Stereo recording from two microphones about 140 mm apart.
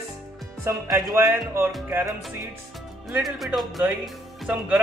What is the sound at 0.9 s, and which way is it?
Speech, 20° right (ahead or behind).